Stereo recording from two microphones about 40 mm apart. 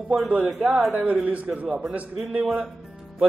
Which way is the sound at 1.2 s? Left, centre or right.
Right.